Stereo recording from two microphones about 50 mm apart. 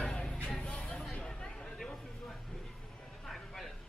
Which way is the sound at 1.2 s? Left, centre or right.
Centre.